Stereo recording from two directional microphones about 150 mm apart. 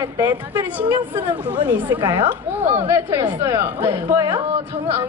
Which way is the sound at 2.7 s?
15° right (ahead or behind).